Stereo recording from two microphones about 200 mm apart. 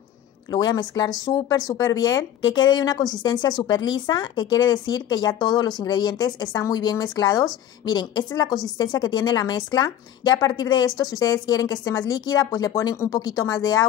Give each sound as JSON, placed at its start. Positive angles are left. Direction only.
{"t": 0.5, "sound": "a woman's voice", "side_deg": 20}